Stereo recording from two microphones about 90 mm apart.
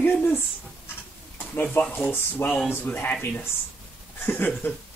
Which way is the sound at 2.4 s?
30° left (ahead or behind).